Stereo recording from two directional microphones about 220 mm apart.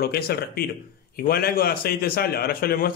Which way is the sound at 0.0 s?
45° left (ahead or behind).